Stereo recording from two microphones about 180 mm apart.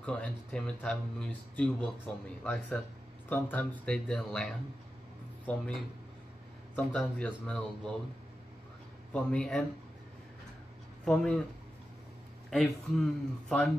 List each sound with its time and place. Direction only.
0.0 s speech: 5° left (ahead or behind)
9.1 s speech: 5° left (ahead or behind)
11.1 s speech: 5° left (ahead or behind)
12.4 s speech: centre (ahead or behind)